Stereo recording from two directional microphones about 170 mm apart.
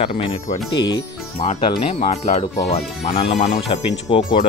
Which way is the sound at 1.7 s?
40° left (ahead or behind).